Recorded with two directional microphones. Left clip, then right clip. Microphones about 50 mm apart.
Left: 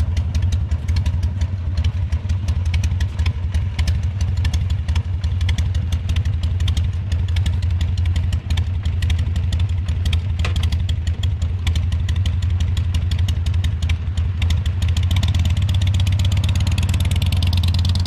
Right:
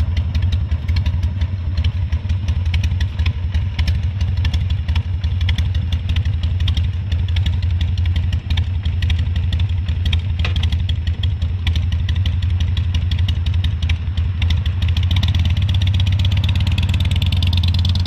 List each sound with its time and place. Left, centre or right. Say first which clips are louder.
0.3 s vehicle: right 2 dB; left
2.7 s vehicle: right 3 dB; left
6.1 s vehicle: right 2 dB; left